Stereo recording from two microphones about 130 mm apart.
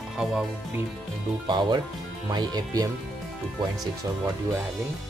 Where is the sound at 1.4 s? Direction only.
35° right (ahead or behind).